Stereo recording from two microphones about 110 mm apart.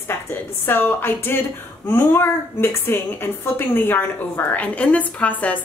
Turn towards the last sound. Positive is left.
turn(degrees=15)  # may be behind; listen again after turning